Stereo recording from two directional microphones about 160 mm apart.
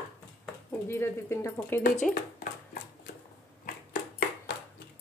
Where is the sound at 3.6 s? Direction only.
65° left (ahead or behind).